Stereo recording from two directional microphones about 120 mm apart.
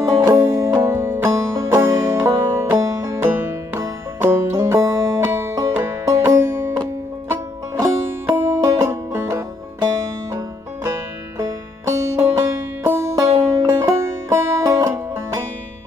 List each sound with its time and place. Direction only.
0.0 s music: 25° right (ahead or behind)
12.2 s music: 20° right (ahead or behind)